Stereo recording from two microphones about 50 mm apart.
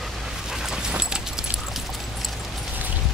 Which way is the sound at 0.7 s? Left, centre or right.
Centre.